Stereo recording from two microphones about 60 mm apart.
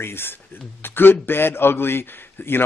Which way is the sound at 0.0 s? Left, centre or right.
Left.